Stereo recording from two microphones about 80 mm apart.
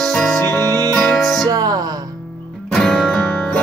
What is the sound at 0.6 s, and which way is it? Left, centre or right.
Music, right.